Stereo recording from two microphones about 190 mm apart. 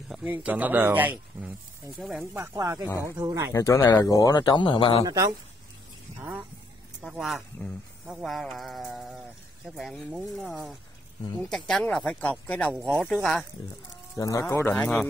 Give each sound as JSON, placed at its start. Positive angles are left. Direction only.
{"t": 0.1, "sound": "speech", "side_deg": -5}
{"t": 2.3, "sound": "speech", "side_deg": -15}
{"t": 3.5, "sound": "speech", "side_deg": 15}
{"t": 5.0, "sound": "speech", "side_deg": -15}
{"t": 14.1, "sound": "speech", "side_deg": 20}